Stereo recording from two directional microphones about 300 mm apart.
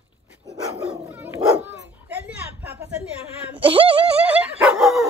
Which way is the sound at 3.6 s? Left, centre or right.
Centre.